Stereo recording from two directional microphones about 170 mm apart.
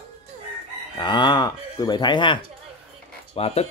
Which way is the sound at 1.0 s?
25° left (ahead or behind).